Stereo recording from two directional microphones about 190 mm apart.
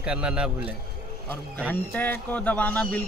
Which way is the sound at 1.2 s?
10° left (ahead or behind).